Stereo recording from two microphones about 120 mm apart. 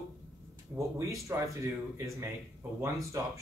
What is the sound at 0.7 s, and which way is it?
Speech, 25° right (ahead or behind).